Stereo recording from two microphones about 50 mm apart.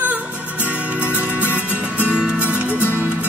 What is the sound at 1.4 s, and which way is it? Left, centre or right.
Music, right.